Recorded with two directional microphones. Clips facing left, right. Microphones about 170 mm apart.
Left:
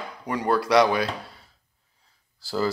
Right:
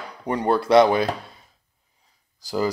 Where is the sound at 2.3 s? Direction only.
15° right (ahead or behind).